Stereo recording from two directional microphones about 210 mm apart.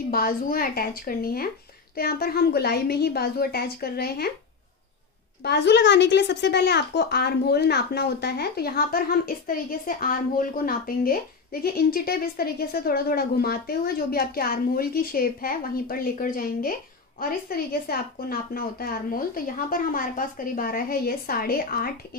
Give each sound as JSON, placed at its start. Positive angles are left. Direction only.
{"t": 0.1, "sound": "speech", "side_deg": 45}
{"t": 5.4, "sound": "speech", "side_deg": 50}